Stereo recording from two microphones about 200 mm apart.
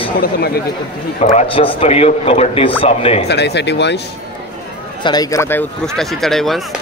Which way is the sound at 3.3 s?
55° left (ahead or behind).